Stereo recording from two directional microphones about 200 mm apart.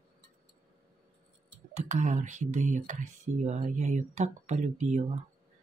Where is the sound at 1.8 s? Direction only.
35° right (ahead or behind).